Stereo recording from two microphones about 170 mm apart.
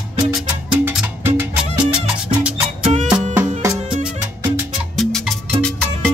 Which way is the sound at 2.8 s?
40° right (ahead or behind).